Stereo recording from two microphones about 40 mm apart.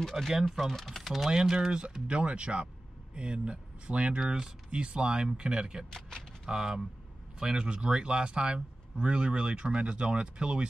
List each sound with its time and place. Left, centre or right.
0.2 s speech: centre
0.5 s speech: centre
1.2 s speech: centre
5.9 s speech: centre
6.4 s speech: centre